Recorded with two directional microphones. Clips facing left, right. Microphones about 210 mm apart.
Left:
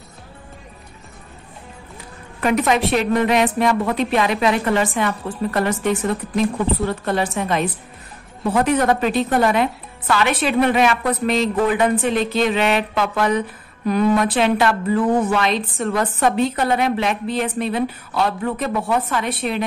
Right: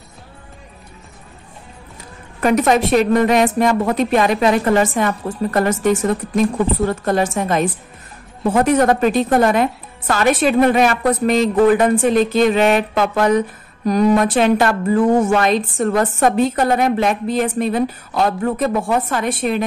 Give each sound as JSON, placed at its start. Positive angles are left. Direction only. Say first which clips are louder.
{"t": 2.4, "sound": "a woman's voice", "louder": "right 3 dB", "side_deg": -45}